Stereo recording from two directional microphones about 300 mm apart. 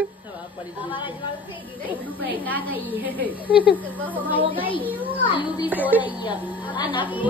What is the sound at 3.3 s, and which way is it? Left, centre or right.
Speech, centre.